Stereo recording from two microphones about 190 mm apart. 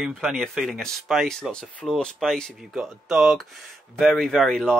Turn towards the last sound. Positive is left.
turn(degrees=0)  # may be behind; listen again after turning